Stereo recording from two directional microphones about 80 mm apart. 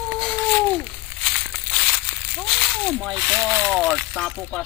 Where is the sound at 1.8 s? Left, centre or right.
Centre.